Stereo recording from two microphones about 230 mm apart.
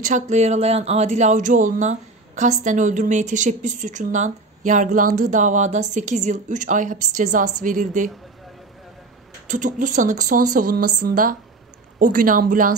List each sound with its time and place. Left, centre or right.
0.0 s speech: right
9.5 s speech: right
10.6 s speech: right
11.0 s speech: right